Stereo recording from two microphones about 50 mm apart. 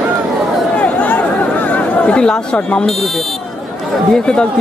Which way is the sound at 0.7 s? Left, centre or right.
Left.